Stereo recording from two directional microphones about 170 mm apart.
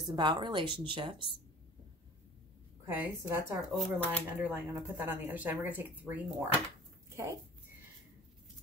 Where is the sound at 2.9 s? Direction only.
15° right (ahead or behind).